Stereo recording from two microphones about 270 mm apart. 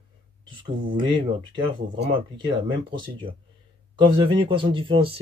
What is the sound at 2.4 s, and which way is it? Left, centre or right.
Speech, centre.